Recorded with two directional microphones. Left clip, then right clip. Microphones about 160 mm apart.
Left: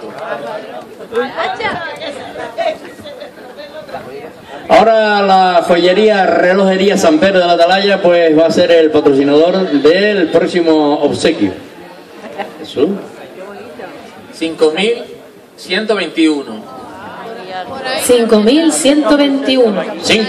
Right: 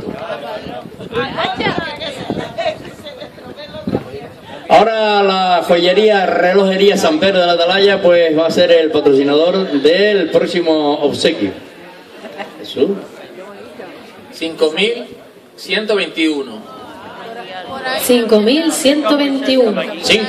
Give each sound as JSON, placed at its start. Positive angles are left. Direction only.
{"t": 1.2, "sound": "chatter", "side_deg": -35}
{"t": 4.6, "sound": "a man's voice", "side_deg": -25}
{"t": 12.8, "sound": "a man's voice", "side_deg": -25}
{"t": 14.4, "sound": "a man's voice", "side_deg": -20}
{"t": 17.7, "sound": "a woman's voice", "side_deg": -40}
{"t": 18.4, "sound": "a man's voice", "side_deg": -25}